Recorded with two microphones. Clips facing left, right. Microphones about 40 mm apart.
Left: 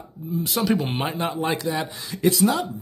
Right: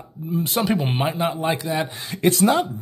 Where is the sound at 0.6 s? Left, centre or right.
Centre.